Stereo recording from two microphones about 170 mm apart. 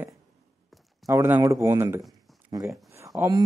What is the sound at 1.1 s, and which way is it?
Speech, 15° right (ahead or behind).